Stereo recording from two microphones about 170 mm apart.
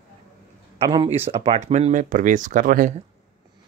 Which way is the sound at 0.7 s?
30° right (ahead or behind).